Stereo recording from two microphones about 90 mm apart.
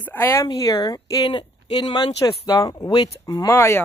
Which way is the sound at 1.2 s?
65° left (ahead or behind).